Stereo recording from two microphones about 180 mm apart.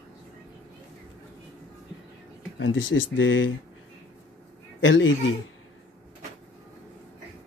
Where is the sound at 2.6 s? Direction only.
90° left.